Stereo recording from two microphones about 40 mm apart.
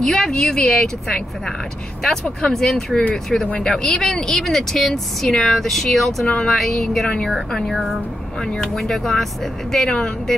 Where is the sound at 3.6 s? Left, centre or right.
Centre.